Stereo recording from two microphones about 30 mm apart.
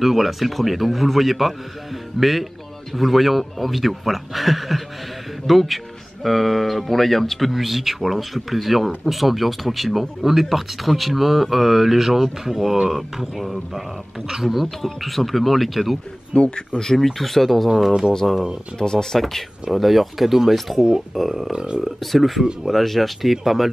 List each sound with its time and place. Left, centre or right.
0.0 s speech: centre
7.5 s speech: centre
14.2 s speech: centre
14.5 s speech: centre
16.3 s speech: left
16.8 s speech: centre
18.8 s speech: left
19.1 s speech: centre
19.7 s speech: centre
21.5 s speech: right
21.8 s speech: centre